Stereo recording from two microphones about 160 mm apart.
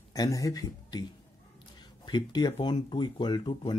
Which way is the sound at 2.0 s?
25° left (ahead or behind).